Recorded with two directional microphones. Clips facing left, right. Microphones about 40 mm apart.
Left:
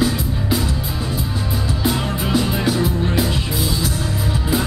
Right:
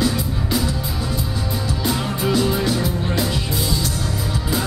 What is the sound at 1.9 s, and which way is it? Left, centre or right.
Music, centre.